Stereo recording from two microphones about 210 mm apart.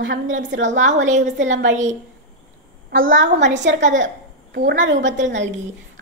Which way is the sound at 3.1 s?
60° right (ahead or behind).